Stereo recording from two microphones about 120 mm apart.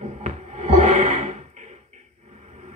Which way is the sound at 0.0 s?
80° right.